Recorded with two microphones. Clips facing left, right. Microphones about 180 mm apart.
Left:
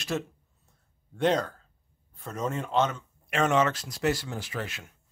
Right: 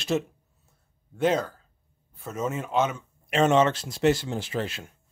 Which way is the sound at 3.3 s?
25° right (ahead or behind).